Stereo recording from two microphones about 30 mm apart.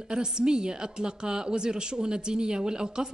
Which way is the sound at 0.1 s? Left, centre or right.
Right.